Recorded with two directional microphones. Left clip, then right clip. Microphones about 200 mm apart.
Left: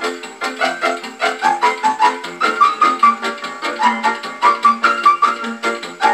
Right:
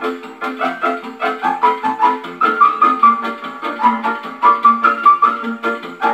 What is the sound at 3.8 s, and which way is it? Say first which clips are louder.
Music: even; 20° left (ahead or behind).